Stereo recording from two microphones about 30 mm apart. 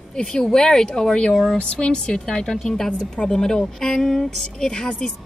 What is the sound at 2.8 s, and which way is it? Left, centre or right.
Speech, left.